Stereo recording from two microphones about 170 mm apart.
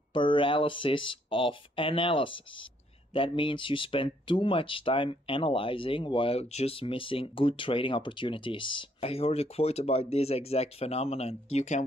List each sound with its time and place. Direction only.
0.1 s speech: 30° left (ahead or behind)